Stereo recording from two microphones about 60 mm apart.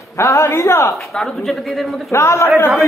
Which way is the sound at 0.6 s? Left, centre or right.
Left.